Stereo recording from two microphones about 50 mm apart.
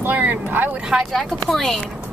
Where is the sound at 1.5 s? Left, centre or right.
Centre.